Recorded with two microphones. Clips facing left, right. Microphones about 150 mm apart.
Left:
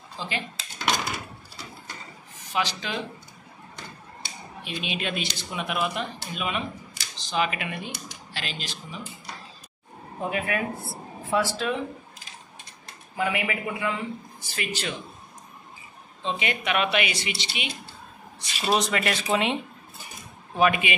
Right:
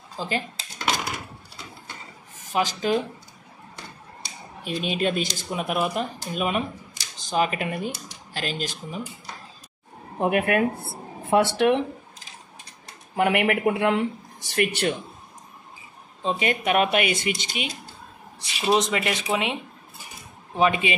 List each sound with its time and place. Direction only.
0.2 s speech: 40° right (ahead or behind)
2.5 s speech: 45° right (ahead or behind)
4.2 s speech: 40° right (ahead or behind)
10.2 s speech: 60° right (ahead or behind)
13.1 s speech: 65° right (ahead or behind)
14.5 s speech: 60° right (ahead or behind)
16.2 s speech: 45° right (ahead or behind)
18.6 s speech: 20° right (ahead or behind)
20.5 s a man's voice: 25° right (ahead or behind)